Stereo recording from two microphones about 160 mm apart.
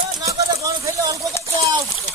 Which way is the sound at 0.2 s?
20° right (ahead or behind).